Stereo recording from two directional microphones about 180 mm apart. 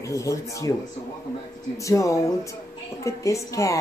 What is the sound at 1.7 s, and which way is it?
A woman's voice, 15° left (ahead or behind).